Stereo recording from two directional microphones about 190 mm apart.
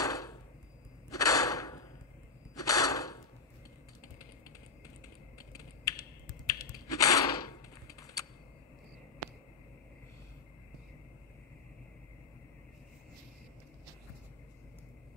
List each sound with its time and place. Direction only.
0.0 s a sound: 20° left (ahead or behind)
5.5 s typing: 20° left (ahead or behind)
6.4 s computer keyboard: 20° left (ahead or behind)